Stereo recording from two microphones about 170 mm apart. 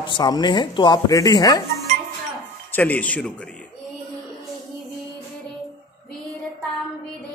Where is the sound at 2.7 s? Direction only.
10° left (ahead or behind).